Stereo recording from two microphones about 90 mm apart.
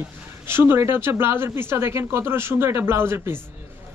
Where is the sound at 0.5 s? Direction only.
25° right (ahead or behind).